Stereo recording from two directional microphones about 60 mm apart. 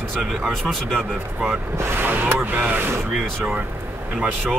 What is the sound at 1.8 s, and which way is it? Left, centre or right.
Speech, right.